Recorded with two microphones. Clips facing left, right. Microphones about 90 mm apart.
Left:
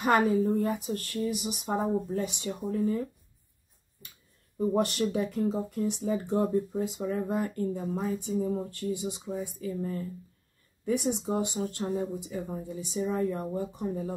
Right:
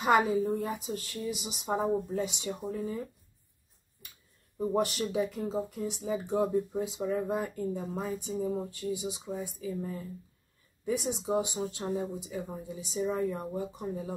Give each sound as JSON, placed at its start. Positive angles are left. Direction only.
{"t": 0.2, "sound": "speech", "side_deg": -5}
{"t": 4.6, "sound": "speech", "side_deg": 0}
{"t": 8.6, "sound": "speech", "side_deg": -10}